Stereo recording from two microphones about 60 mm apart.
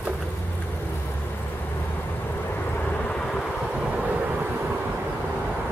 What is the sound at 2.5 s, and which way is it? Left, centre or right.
Vehicle, left.